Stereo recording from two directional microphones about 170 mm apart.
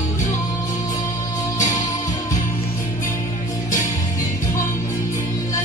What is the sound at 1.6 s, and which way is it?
Music, 45° left (ahead or behind).